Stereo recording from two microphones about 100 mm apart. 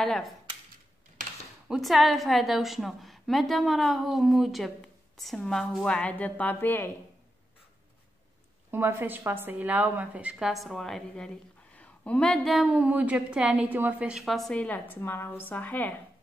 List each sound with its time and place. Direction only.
0.0 s a woman's voice: 5° left (ahead or behind)
1.7 s a woman's voice: centre (ahead or behind); by 6.9 s 20° left (ahead or behind)
8.6 s a woman's voice: 25° right (ahead or behind)
10.5 s a woman's voice: centre (ahead or behind)
12.6 s a woman's voice: 15° right (ahead or behind)
14.2 s a woman's voice: centre (ahead or behind)
15.0 s a woman's voice: 20° left (ahead or behind)